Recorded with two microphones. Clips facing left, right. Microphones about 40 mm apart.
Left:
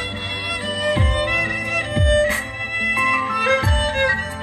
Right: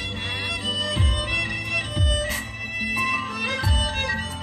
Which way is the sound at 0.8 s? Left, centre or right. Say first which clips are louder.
Left 7 dB; centre.